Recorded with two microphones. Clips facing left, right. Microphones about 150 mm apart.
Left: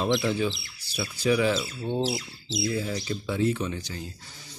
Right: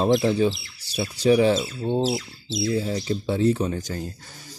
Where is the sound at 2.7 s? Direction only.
35° right (ahead or behind).